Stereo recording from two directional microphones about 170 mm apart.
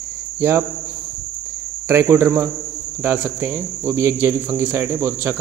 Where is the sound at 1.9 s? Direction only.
15° right (ahead or behind).